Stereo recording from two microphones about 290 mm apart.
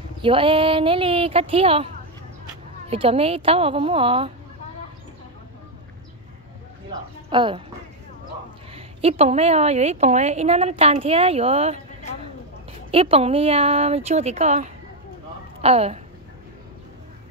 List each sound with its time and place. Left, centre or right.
0.2 s a woman's voice: centre
2.9 s a woman's voice: centre
6.9 s a woman's voice: centre
8.7 s a woman's voice: centre